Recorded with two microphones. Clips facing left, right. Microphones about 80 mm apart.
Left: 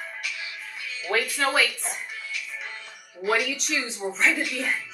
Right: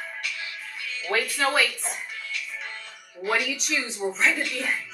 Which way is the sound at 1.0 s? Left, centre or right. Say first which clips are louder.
Even; centre.